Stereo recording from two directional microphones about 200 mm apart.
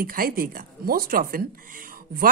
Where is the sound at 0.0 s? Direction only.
45° right (ahead or behind).